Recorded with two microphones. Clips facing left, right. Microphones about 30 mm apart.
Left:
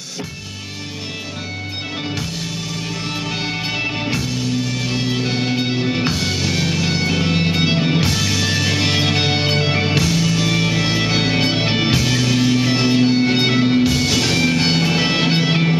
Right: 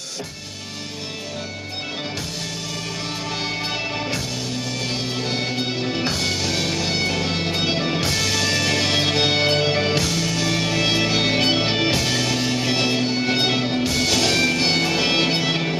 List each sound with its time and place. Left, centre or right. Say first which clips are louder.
3.8 s music: left 4 dB; left
5.2 s music: left 4 dB; centre
7.1 s music: left 4 dB; centre